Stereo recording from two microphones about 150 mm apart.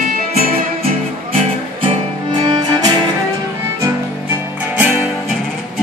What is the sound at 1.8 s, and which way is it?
Music, 30° right (ahead or behind).